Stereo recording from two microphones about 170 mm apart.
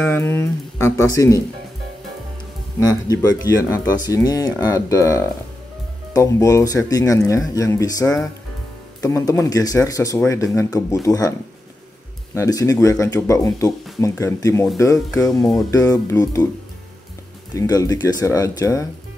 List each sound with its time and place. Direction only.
0.0 s speech: 10° left (ahead or behind)
2.8 s speech: 20° left (ahead or behind)
12.4 s speech: 20° left (ahead or behind)
17.6 s speech: 20° left (ahead or behind)